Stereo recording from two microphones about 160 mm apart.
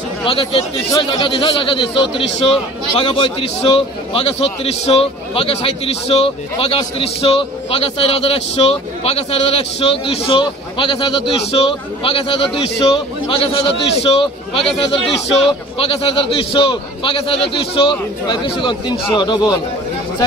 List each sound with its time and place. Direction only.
0.2 s a man's voice: 35° left (ahead or behind)